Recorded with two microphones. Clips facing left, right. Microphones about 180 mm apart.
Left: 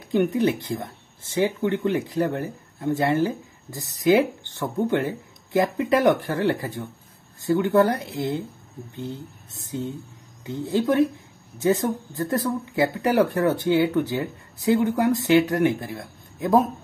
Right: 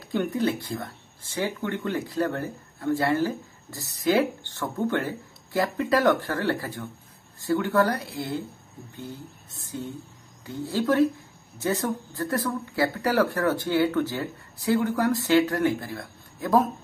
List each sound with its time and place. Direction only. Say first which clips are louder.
0.0 s speech: left 5 dB; 20° left (ahead or behind)